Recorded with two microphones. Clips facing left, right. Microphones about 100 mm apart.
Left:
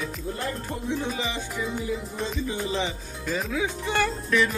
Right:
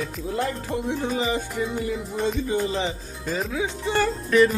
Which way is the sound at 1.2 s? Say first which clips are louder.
Right 5 dB; 45° right (ahead or behind).